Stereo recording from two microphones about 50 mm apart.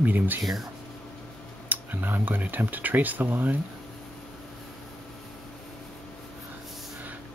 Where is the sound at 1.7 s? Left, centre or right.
Right.